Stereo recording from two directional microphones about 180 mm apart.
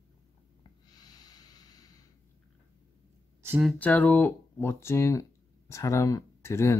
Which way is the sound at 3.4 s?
10° right (ahead or behind).